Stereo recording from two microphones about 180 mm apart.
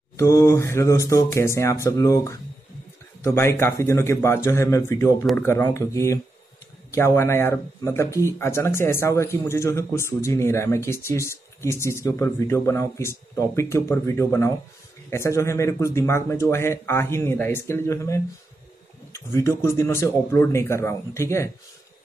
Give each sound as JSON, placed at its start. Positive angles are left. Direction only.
{"t": 0.2, "sound": "speech", "side_deg": 15}